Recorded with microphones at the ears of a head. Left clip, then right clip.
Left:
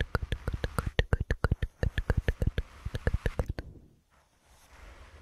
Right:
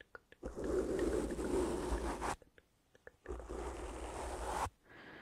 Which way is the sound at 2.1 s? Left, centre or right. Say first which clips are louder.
Left 4 dB; left.